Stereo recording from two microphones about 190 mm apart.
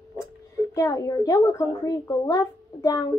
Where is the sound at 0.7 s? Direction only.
15° left (ahead or behind).